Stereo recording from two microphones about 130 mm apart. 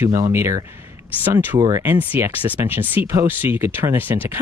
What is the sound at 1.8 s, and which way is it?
Speech, 15° right (ahead or behind).